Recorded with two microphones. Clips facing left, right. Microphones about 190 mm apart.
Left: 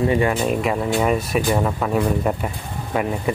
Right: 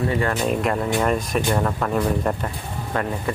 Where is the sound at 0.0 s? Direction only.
15° left (ahead or behind).